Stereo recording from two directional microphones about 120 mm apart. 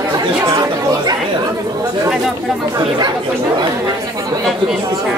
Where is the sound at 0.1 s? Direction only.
30° right (ahead or behind).